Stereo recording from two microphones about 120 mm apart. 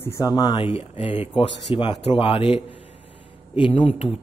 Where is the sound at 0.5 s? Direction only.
50° left (ahead or behind).